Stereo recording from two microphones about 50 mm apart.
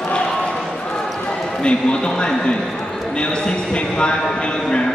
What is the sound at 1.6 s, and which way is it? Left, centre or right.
A man's voice, centre.